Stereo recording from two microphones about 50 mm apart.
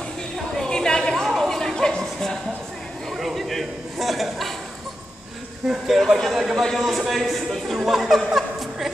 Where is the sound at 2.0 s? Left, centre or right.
Centre.